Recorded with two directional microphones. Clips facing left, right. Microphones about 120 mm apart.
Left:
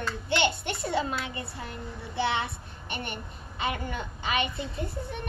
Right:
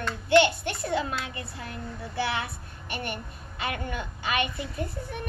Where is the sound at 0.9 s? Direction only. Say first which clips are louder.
Left 2 dB; 25° left (ahead or behind).